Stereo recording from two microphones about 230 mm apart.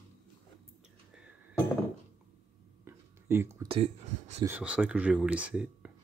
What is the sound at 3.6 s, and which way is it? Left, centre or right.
Speech, right.